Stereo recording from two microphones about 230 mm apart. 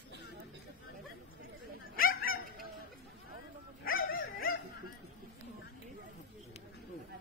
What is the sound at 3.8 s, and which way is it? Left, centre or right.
Dog, left.